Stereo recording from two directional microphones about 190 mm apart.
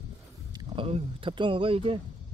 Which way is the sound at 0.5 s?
30° right (ahead or behind).